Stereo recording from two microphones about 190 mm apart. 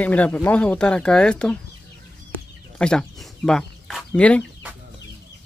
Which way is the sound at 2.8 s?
5° left (ahead or behind).